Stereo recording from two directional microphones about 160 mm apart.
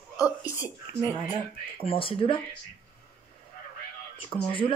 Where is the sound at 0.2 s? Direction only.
20° left (ahead or behind).